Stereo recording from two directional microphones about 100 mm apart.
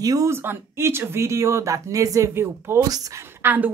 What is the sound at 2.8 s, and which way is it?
Speech, 35° right (ahead or behind).